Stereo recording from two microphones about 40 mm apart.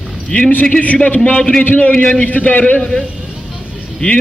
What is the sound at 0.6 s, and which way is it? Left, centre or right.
Speech, left.